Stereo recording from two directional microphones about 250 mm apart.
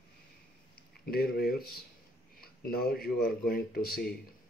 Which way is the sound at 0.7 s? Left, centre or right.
Left.